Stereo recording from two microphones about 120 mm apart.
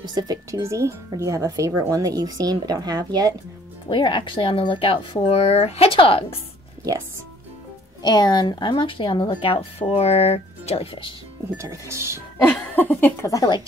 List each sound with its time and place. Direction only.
0.0 s speech: 35° right (ahead or behind)
3.9 s speech: 40° left (ahead or behind)
8.0 s speech: 35° left (ahead or behind); by 10.9 s 60° left (ahead or behind)
11.5 s speech: 25° right (ahead or behind)
12.4 s speech: 15° left (ahead or behind)